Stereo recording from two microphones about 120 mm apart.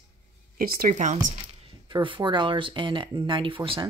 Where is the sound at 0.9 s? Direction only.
80° right.